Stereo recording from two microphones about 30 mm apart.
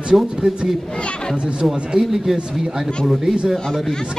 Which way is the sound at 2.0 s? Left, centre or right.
Centre.